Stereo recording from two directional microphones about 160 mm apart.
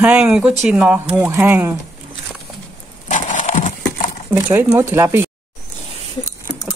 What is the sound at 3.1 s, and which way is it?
Horse, 50° left (ahead or behind).